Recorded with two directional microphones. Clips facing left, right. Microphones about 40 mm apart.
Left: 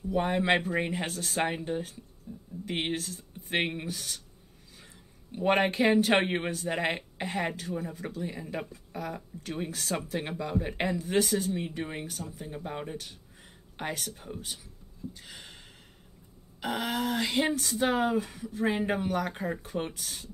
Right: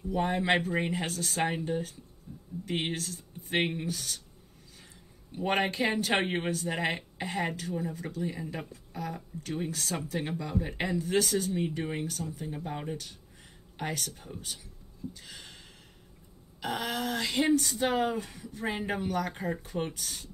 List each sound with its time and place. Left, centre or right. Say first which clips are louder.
0.1 s speech: left 1 dB; centre
2.3 s a sound: left 4 dB; left
2.6 s speech: left 1 dB; centre
5.3 s speech: left 3 dB; centre
15.1 s gasp: even; centre
16.5 s speech: left 2 dB; centre